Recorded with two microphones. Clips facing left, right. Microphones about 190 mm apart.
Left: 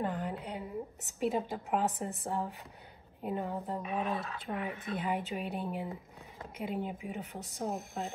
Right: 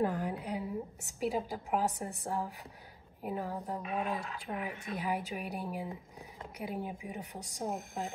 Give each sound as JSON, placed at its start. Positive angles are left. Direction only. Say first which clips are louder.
{"t": 0.1, "sound": "a woman's voice", "louder": "right 2 dB", "side_deg": 0}
{"t": 7.1, "sound": "speech", "louder": "left 2 dB", "side_deg": -15}
{"t": 7.7, "sound": "a woman's voice", "louder": "even", "side_deg": 0}